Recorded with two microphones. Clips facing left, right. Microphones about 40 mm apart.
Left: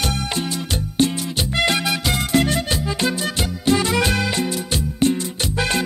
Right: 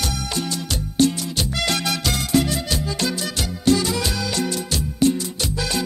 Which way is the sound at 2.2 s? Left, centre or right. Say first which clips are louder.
Left 1 dB; left.